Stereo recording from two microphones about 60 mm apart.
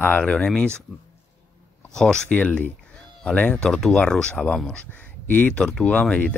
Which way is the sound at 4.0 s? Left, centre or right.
Centre.